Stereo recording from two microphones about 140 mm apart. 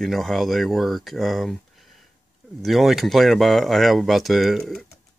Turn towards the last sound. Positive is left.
turn(degrees=0)  # may be behind; listen again after turning